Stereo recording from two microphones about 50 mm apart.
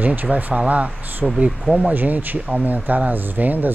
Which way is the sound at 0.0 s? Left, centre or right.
Right.